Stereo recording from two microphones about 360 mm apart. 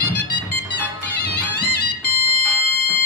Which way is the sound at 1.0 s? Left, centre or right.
Left.